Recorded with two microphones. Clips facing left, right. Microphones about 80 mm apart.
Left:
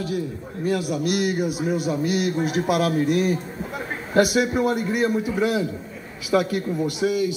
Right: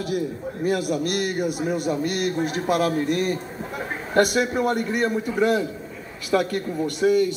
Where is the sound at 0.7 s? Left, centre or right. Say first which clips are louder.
Even; right.